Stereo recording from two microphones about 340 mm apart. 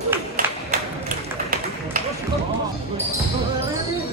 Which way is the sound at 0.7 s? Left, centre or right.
Right.